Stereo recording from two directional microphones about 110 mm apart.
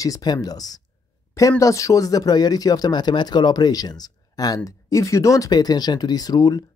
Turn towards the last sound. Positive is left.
turn(degrees=40)  # may be behind; listen again after turning